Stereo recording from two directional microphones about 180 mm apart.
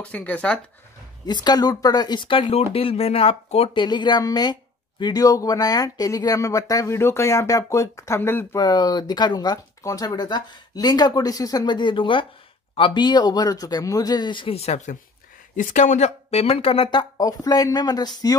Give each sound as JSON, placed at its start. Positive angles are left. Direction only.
{"t": 0.0, "sound": "speech", "side_deg": 10}
{"t": 1.2, "sound": "speech", "side_deg": 25}